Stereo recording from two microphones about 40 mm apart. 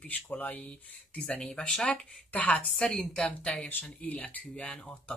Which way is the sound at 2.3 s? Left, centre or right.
Left.